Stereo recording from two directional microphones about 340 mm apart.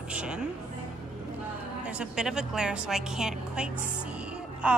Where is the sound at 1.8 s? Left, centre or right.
Centre.